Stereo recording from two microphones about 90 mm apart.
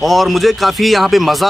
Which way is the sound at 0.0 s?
Centre (ahead or behind).